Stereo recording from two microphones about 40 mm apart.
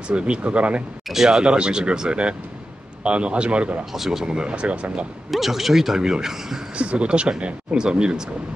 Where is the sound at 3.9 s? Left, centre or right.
Centre.